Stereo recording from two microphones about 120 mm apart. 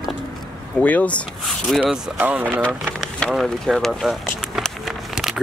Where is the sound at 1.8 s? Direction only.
10° right (ahead or behind).